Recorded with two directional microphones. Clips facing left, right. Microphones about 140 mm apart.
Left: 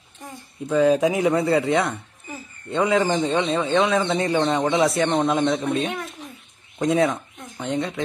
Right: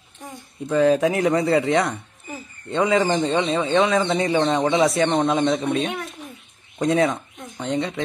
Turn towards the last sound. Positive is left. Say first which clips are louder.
# right 1 dB
turn(degrees=0)  # may be behind; listen again after turning